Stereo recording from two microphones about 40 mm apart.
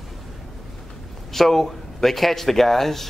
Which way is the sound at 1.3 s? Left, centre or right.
Centre.